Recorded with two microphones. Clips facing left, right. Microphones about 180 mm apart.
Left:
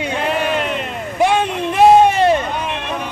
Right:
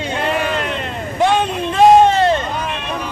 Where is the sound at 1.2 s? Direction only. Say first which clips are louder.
Even; 10° left (ahead or behind).